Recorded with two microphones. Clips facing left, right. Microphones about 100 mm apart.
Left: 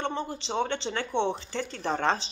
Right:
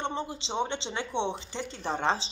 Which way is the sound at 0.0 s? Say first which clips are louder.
Left 1 dB; 20° right (ahead or behind).